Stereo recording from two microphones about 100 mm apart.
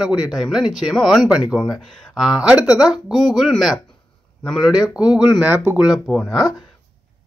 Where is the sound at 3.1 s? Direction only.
45° left (ahead or behind).